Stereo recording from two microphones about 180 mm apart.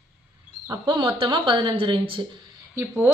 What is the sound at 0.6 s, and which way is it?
A woman's voice, 25° right (ahead or behind).